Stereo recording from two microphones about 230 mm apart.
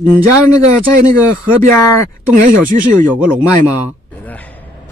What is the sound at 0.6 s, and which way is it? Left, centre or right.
Speech, right.